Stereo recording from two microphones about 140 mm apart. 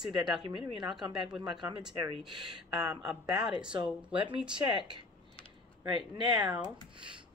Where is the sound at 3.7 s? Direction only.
35° right (ahead or behind).